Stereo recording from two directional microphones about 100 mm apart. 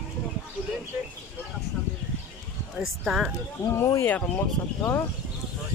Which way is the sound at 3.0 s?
5° right (ahead or behind).